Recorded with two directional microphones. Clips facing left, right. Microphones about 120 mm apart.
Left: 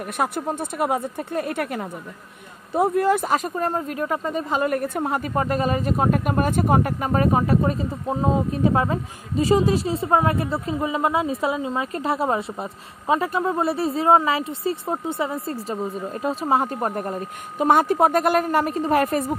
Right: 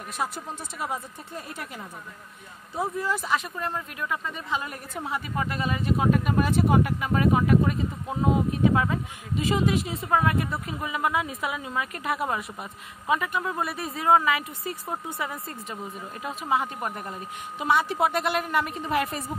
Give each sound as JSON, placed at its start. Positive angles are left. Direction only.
{"t": 0.2, "sound": "speech", "side_deg": 55}